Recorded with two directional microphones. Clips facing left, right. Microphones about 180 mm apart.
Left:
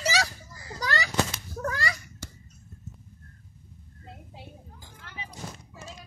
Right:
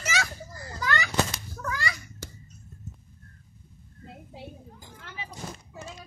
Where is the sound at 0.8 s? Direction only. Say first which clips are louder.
Right 1 dB; 35° left (ahead or behind).